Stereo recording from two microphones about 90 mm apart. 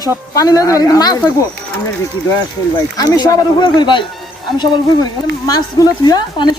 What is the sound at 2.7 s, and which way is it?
Speech, 50° left (ahead or behind).